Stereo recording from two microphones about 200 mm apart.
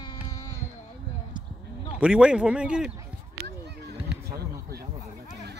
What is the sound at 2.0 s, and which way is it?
Speech, 5° right (ahead or behind).